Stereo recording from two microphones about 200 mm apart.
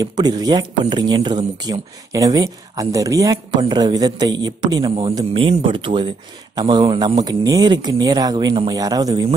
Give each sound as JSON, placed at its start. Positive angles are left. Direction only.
{"t": 0.0, "sound": "speech", "side_deg": -20}